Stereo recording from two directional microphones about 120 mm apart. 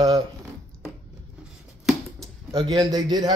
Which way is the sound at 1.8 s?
Centre (ahead or behind).